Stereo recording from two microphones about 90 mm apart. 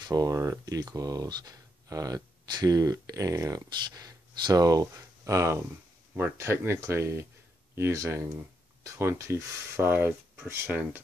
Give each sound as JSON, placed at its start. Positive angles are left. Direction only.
{"t": 0.0, "sound": "speech", "side_deg": -40}